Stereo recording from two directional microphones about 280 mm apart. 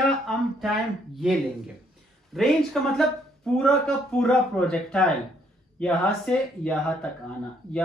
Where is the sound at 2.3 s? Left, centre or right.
Centre.